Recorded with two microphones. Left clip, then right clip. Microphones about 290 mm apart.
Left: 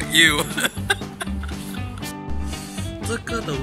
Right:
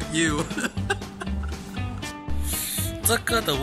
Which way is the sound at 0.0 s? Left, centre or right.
Centre.